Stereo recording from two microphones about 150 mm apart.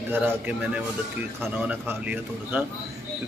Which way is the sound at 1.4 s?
15° right (ahead or behind).